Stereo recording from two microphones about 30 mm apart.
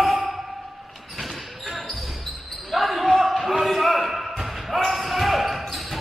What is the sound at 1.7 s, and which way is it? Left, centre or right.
Basketball bounce, centre.